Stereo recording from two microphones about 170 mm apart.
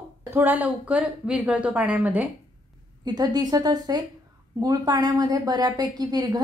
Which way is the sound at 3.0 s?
25° right (ahead or behind).